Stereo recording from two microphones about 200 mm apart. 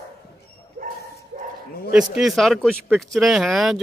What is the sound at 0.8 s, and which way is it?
Bow-wow, 45° right (ahead or behind).